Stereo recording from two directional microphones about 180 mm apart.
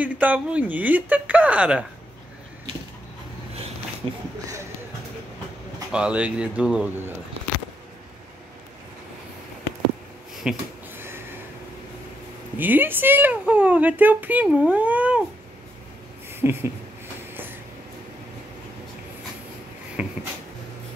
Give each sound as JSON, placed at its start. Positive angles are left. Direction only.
{"t": 0.0, "sound": "speech", "side_deg": -10}
{"t": 4.0, "sound": "speech", "side_deg": -30}
{"t": 5.9, "sound": "speech", "side_deg": -5}
{"t": 10.4, "sound": "speech", "side_deg": -5}
{"t": 11.0, "sound": "a sound", "side_deg": -15}
{"t": 12.5, "sound": "speech", "side_deg": -10}
{"t": 16.3, "sound": "a sound", "side_deg": -10}
{"t": 17.3, "sound": "vehicle", "side_deg": -10}
{"t": 20.0, "sound": "a sound", "side_deg": -5}